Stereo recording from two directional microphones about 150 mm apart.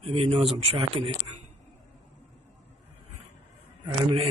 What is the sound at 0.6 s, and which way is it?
Speech, 40° right (ahead or behind).